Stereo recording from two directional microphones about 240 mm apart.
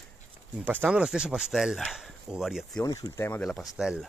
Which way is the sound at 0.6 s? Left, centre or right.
Centre.